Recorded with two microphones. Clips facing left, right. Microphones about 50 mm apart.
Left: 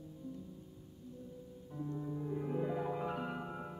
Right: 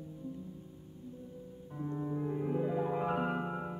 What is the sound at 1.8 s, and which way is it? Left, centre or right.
Music, right.